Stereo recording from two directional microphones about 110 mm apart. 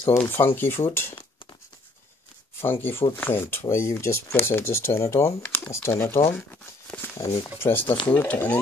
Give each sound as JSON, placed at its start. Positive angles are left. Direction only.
{"t": 0.0, "sound": "speech", "side_deg": 20}
{"t": 2.6, "sound": "speech", "side_deg": 20}
{"t": 6.3, "sound": "crumpling", "side_deg": 15}
{"t": 7.5, "sound": "speech", "side_deg": 20}